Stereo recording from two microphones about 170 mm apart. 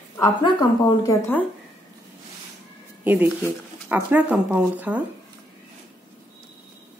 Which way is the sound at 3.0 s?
10° right (ahead or behind).